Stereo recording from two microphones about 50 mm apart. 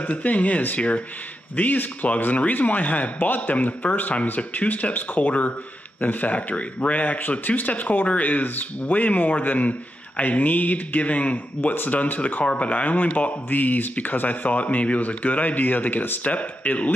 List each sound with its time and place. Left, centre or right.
0.0 s speech: left